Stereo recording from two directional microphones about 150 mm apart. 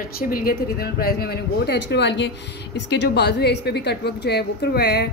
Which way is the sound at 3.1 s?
90° left.